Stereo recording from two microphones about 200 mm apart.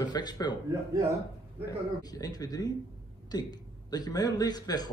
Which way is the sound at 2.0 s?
20° left (ahead or behind).